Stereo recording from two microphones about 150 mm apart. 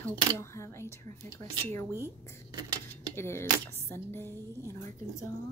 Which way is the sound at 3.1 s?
15° left (ahead or behind).